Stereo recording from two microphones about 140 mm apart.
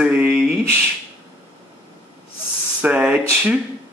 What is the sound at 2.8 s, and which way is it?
Speech, 10° right (ahead or behind).